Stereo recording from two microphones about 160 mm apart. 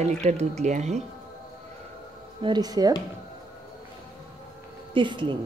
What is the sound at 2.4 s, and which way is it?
Speech, 25° right (ahead or behind).